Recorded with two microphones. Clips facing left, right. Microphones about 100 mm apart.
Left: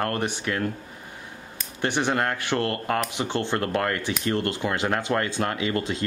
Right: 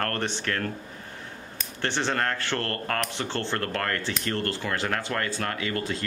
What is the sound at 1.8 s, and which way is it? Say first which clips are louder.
Speech: left 3 dB; 15° left (ahead or behind).